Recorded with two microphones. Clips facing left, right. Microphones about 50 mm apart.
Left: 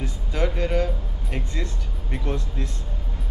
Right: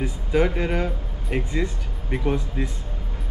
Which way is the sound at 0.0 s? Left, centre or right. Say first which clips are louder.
Right 5 dB; centre.